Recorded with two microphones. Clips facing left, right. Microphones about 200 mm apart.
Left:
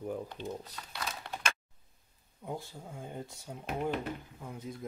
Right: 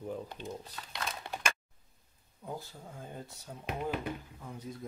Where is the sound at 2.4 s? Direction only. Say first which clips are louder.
Left 2 dB; 15° left (ahead or behind).